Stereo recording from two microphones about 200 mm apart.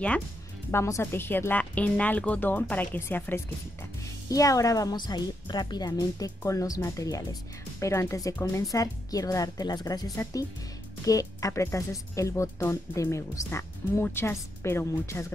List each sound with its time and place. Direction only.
0.7 s speech: 15° left (ahead or behind)